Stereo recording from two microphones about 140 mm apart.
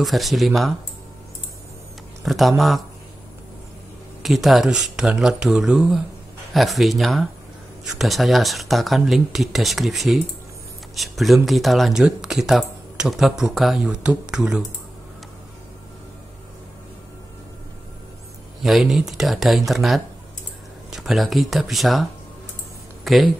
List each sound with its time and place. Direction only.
0.0 s speech: centre (ahead or behind)
2.2 s speech: centre (ahead or behind)
4.2 s speech: centre (ahead or behind)
18.6 s speech: centre (ahead or behind)
23.0 s speech: centre (ahead or behind)